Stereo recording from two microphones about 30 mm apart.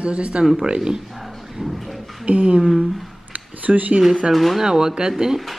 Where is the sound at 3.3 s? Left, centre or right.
Right.